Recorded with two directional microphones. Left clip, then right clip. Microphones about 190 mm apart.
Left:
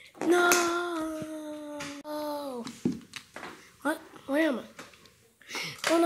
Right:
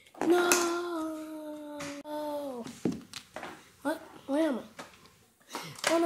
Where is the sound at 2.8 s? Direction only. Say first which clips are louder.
Even; 25° right (ahead or behind).